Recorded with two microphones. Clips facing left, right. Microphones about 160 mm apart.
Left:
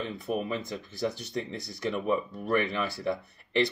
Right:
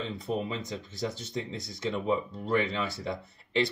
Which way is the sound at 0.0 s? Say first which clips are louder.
Left 1 dB; 20° right (ahead or behind).